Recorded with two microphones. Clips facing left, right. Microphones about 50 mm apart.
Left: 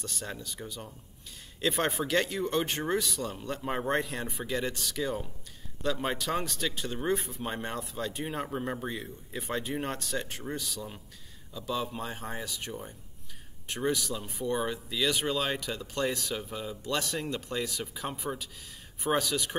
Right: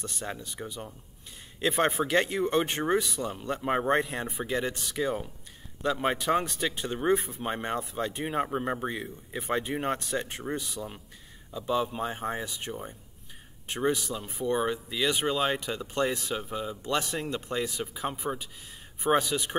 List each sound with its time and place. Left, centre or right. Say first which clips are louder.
0.0 s speech: right 2 dB; right